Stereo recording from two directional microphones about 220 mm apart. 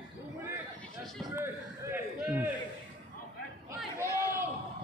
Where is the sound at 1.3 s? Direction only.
10° right (ahead or behind).